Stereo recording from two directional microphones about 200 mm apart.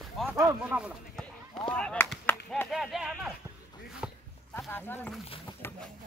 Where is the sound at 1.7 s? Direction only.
5° left (ahead or behind).